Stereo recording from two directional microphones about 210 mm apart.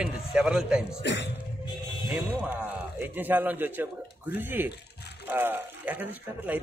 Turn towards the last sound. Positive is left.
turn(degrees=-10)  # may be behind; listen again after turning